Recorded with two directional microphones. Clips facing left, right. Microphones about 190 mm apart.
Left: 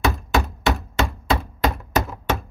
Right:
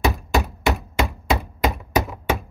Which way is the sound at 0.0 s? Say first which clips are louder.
Even; 15° right (ahead or behind).